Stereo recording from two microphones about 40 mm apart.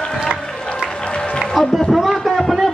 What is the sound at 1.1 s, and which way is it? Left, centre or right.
Music, left.